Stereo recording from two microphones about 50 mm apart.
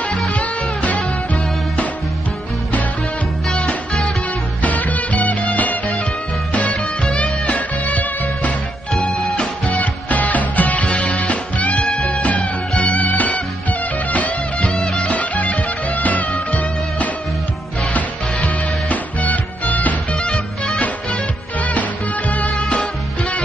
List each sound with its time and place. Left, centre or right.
0.3 s music: left
3.5 s music: centre
4.6 s music: left
9.0 s music: centre
9.8 s music: left
14.7 s music: centre
15.0 s music: left
18.9 s music: left
20.2 s music: centre
21.5 s music: left